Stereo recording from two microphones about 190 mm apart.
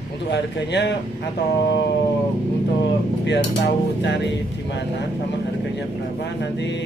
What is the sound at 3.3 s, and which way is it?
Speech, 65° left (ahead or behind).